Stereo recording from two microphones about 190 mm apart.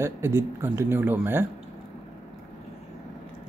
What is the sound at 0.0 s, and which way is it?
Speech, 15° right (ahead or behind).